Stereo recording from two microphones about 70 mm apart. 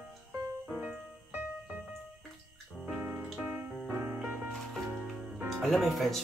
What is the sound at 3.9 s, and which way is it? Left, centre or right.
Music, right.